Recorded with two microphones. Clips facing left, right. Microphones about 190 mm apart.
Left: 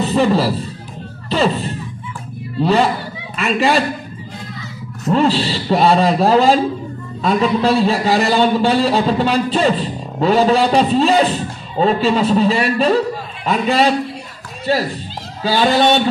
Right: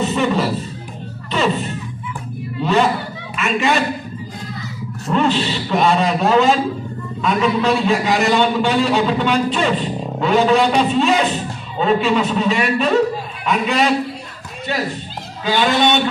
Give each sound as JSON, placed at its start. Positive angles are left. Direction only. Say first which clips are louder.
{"t": 0.0, "sound": "a man's voice", "louder": "left 3 dB", "side_deg": 35}
{"t": 5.1, "sound": "a man's voice", "louder": "left 2 dB", "side_deg": 35}